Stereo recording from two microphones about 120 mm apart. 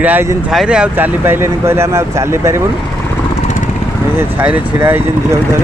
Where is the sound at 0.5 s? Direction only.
5° right (ahead or behind); by 2.6 s 20° right (ahead or behind).